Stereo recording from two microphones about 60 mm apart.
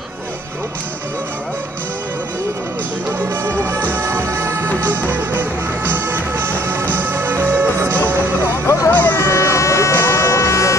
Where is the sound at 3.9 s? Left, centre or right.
Right.